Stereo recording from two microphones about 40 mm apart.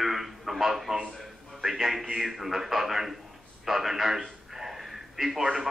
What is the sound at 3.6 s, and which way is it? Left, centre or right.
Radio, centre.